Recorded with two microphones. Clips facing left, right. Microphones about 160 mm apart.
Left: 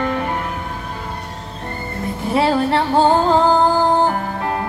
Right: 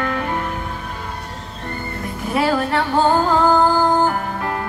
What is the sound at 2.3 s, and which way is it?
Speech, 30° left (ahead or behind).